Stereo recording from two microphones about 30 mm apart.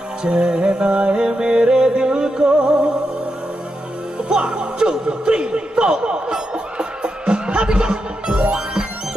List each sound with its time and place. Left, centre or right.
0.2 s music: right
4.2 s music: right